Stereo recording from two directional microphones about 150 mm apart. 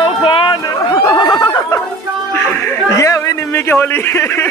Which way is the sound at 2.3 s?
15° left (ahead or behind).